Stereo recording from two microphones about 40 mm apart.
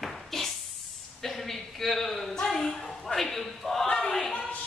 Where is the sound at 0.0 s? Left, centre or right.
Centre.